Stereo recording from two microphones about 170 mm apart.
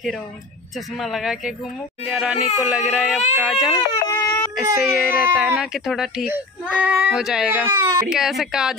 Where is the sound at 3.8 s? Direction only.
20° left (ahead or behind).